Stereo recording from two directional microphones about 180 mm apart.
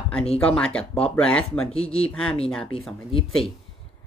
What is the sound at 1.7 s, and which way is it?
Speech, 35° left (ahead or behind).